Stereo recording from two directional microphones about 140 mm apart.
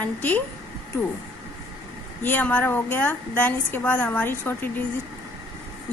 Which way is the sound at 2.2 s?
10° left (ahead or behind).